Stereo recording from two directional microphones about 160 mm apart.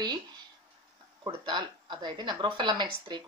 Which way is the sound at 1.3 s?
30° right (ahead or behind).